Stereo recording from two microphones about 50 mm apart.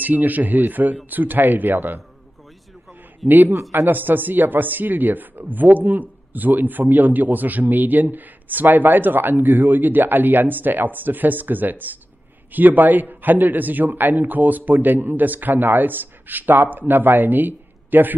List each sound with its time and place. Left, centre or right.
0.0 s a man's voice: right
3.3 s a man's voice: right